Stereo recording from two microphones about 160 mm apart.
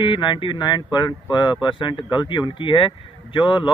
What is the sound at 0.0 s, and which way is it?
Speech, 30° left (ahead or behind).